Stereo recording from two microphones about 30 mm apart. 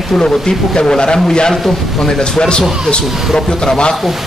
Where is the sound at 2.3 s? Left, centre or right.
Left.